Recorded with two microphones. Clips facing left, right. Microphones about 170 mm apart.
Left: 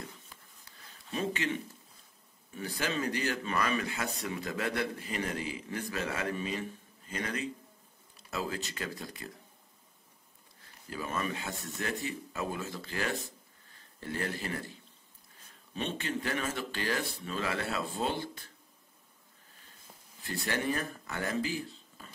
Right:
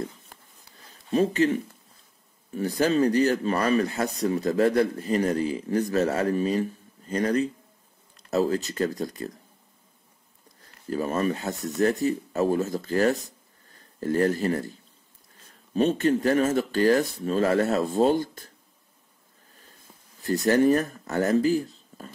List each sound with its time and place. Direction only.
0.3 s a sound: 60° right (ahead or behind)
1.1 s speech: 40° right (ahead or behind)
10.6 s speech: 40° right (ahead or behind)
20.2 s speech: 40° right (ahead or behind)